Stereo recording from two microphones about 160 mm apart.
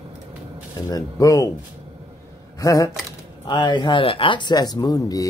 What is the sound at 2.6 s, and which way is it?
Speech, 20° left (ahead or behind).